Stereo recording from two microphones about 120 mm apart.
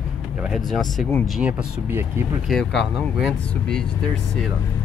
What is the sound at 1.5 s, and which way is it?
Speech, 20° right (ahead or behind).